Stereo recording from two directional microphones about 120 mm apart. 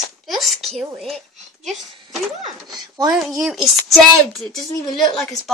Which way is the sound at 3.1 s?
5° right (ahead or behind).